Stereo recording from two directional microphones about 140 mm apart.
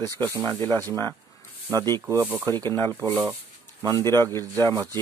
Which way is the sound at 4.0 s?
20° left (ahead or behind).